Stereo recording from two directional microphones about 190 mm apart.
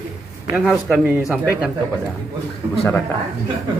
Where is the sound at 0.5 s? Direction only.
Centre (ahead or behind).